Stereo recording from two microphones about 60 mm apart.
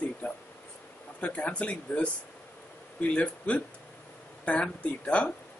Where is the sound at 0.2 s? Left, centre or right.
Left.